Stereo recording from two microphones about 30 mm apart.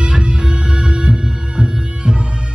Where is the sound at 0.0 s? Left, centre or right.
Right.